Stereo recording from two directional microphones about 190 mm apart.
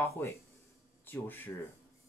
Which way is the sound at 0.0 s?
15° left (ahead or behind).